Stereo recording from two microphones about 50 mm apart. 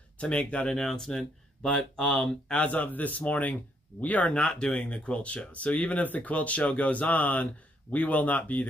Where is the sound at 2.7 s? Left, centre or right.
Left.